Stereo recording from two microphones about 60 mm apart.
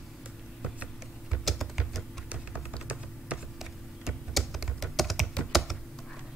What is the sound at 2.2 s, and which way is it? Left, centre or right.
Typing, right.